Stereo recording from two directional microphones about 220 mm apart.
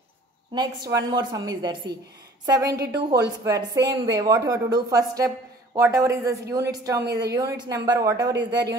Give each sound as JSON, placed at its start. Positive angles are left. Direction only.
{"t": 0.6, "sound": "speech", "side_deg": -15}
{"t": 8.2, "sound": "speech", "side_deg": -50}